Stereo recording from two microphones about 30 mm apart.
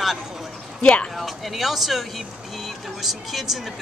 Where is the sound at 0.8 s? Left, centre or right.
Left.